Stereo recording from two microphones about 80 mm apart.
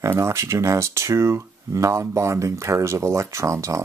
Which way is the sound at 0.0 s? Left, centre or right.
Right.